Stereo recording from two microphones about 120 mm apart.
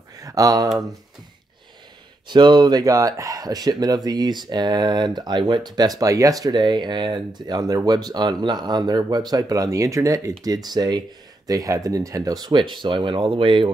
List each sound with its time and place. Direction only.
0.2 s speech: 30° right (ahead or behind)
2.2 s speech: 40° right (ahead or behind)